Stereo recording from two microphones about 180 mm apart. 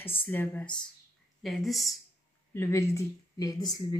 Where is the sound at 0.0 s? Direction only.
10° left (ahead or behind).